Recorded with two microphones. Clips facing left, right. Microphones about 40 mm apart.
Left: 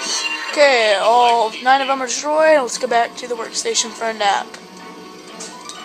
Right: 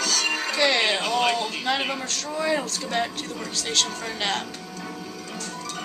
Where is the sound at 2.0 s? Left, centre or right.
Left.